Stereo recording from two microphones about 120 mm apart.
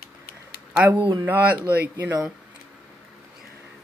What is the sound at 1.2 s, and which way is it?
Speech, 15° right (ahead or behind).